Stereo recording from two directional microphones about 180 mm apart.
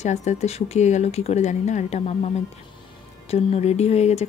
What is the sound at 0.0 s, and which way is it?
A woman's voice, 40° left (ahead or behind).